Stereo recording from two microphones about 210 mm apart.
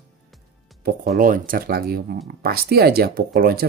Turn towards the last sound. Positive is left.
turn(degrees=-45)  # may be behind; listen again after turning